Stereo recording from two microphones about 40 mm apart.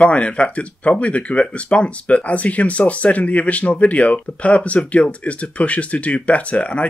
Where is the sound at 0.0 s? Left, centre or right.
Left.